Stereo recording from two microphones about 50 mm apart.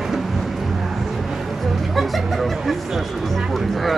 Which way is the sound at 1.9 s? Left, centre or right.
Centre.